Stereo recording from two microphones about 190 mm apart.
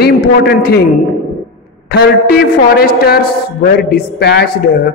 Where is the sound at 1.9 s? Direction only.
55° left (ahead or behind).